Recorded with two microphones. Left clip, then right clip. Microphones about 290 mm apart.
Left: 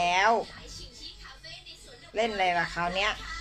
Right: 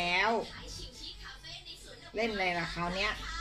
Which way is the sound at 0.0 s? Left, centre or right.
Left.